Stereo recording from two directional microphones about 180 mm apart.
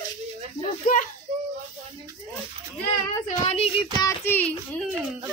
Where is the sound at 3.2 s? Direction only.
35° left (ahead or behind).